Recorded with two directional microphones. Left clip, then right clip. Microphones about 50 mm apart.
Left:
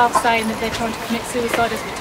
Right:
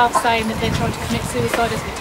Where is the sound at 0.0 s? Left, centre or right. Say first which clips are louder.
Even; centre.